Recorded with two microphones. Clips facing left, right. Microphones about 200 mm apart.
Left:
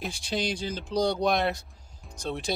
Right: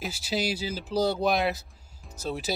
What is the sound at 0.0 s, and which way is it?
Speech, 5° right (ahead or behind).